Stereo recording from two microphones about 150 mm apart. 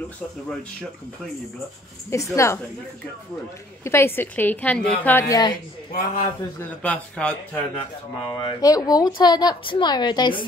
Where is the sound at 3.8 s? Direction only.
15° left (ahead or behind).